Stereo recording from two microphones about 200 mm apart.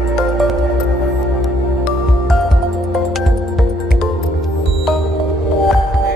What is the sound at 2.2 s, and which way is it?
Music, centre (ahead or behind).